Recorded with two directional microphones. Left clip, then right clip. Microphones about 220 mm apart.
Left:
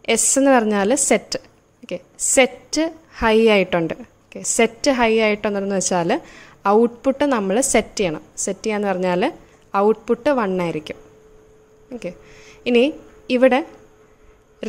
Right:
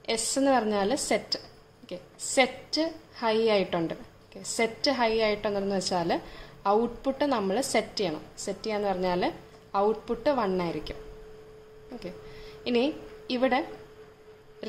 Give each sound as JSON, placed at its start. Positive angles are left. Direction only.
{"t": 0.0, "sound": "a woman's voice", "side_deg": 35}
{"t": 12.0, "sound": "a woman's voice", "side_deg": 40}